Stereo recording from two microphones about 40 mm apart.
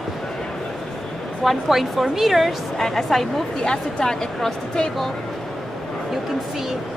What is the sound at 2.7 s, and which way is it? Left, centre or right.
Speech, centre.